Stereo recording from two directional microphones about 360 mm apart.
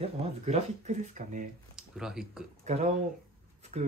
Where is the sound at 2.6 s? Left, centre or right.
Centre.